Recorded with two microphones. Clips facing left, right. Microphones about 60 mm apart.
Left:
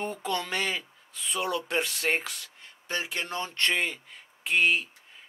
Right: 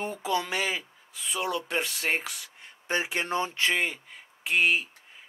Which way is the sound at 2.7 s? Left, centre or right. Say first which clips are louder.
Right 4 dB; right.